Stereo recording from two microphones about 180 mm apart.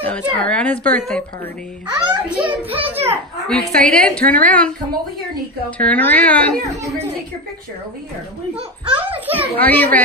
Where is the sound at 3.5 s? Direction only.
5° left (ahead or behind).